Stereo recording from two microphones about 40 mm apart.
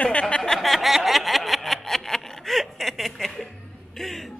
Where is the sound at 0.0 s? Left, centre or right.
Left.